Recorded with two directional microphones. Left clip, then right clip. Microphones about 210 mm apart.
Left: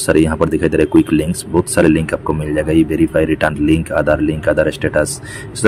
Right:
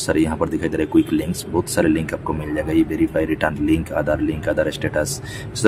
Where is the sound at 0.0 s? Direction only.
15° left (ahead or behind).